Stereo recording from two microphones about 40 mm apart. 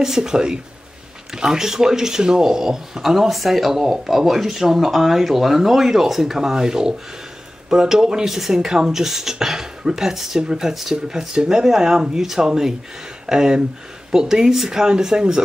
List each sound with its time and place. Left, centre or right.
0.0 s speech: centre
10.7 s speech: centre